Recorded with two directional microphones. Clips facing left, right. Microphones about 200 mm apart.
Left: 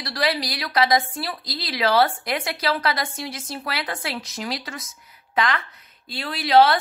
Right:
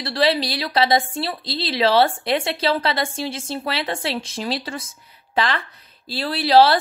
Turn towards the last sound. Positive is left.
turn(degrees=-35)  # may be behind; listen again after turning